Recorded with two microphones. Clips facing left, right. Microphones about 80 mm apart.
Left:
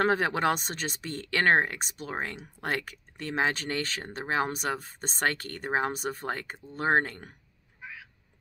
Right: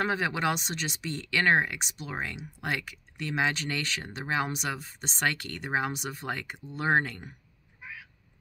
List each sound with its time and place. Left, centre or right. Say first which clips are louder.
0.0 s speech: left 3 dB; left